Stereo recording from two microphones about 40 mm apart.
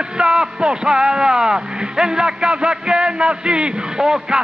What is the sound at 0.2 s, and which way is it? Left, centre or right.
Speech, centre.